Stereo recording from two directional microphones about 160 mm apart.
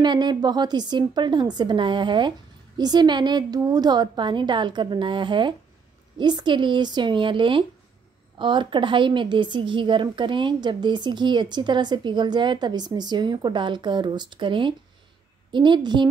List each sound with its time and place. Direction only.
0.0 s a woman's voice: 25° right (ahead or behind)